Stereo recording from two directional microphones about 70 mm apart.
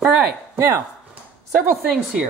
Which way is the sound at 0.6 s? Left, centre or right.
Right.